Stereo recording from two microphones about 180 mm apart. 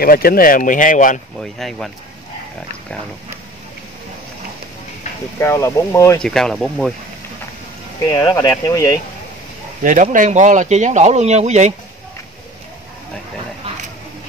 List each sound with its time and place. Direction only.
0.0 s speech: 55° left (ahead or behind)
1.4 s speech: centre (ahead or behind)
5.4 s speech: 15° left (ahead or behind)
6.2 s speech: 5° left (ahead or behind)
8.1 s speech: 20° left (ahead or behind)
9.8 s speech: 45° right (ahead or behind)